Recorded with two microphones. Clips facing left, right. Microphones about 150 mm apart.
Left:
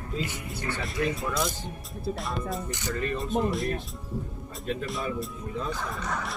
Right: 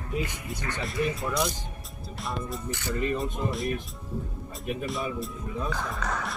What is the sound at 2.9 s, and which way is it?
Speech, 15° right (ahead or behind).